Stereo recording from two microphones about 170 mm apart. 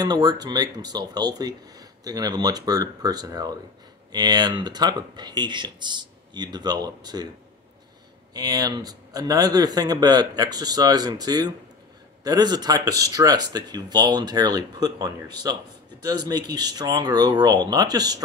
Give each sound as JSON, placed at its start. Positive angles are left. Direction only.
{"t": 0.0, "sound": "speech", "side_deg": -20}
{"t": 8.3, "sound": "speech", "side_deg": -20}